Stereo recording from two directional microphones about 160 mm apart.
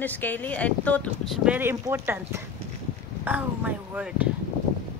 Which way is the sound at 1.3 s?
5° right (ahead or behind).